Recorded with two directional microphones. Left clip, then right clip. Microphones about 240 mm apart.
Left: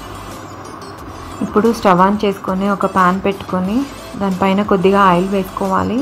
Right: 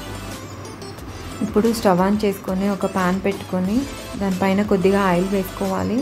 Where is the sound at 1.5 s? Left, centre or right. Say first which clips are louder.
Left 5 dB; centre.